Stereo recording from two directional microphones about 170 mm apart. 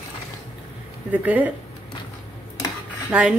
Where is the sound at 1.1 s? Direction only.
10° right (ahead or behind).